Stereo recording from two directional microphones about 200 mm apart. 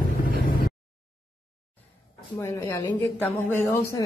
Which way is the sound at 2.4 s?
15° left (ahead or behind).